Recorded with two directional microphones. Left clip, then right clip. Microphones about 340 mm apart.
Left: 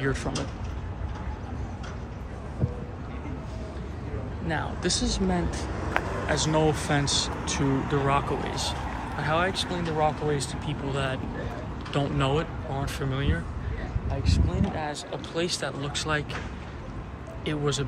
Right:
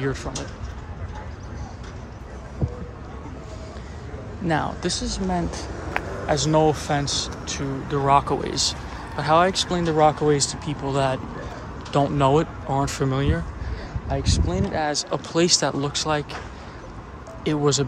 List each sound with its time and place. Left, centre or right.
0.0 s speech: centre
4.8 s speech: centre
6.2 s speech: centre
17.5 s speech: centre